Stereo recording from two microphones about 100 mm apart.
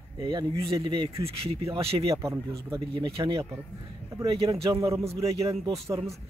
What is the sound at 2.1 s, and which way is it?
Speech, 30° right (ahead or behind).